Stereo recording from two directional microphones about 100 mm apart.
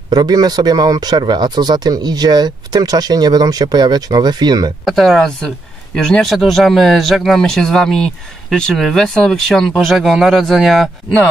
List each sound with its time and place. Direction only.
0.1 s speech: 45° right (ahead or behind)
4.8 s speech: centre (ahead or behind)